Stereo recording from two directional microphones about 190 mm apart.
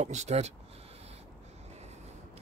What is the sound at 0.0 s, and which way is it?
Speech, 35° right (ahead or behind).